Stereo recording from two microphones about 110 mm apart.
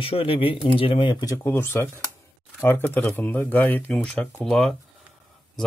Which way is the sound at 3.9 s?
5° left (ahead or behind).